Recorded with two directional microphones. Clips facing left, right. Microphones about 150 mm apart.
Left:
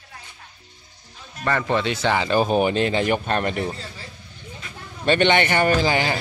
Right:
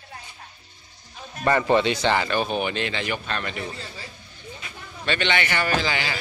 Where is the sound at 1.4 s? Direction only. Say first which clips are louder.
Right 3 dB; 5° right (ahead or behind).